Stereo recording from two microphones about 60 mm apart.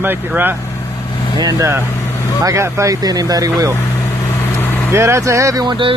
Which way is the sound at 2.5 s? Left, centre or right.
Right.